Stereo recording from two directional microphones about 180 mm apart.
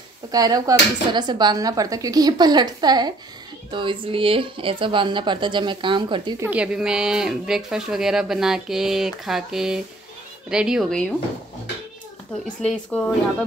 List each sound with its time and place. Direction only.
0.3 s speech: 20° right (ahead or behind)
6.4 s speech: 5° right (ahead or behind)
12.6 s a woman's voice: 5° left (ahead or behind)